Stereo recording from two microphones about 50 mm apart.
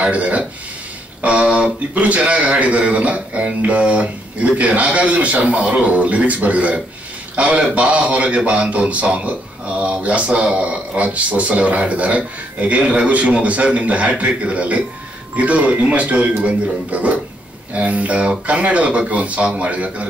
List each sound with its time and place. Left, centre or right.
0.0 s speech: right